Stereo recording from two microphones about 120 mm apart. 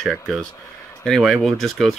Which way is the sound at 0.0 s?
5° left (ahead or behind).